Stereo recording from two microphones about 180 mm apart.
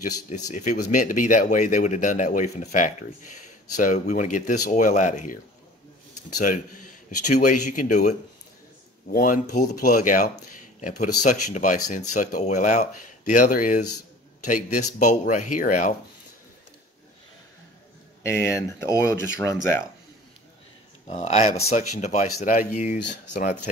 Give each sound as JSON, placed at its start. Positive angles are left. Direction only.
{"t": 0.5, "sound": "speech", "side_deg": 45}
{"t": 18.2, "sound": "speech", "side_deg": 15}
{"t": 21.1, "sound": "speech", "side_deg": 35}